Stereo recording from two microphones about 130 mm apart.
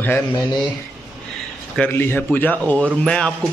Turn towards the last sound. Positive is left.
turn(degrees=5)  # may be behind; listen again after turning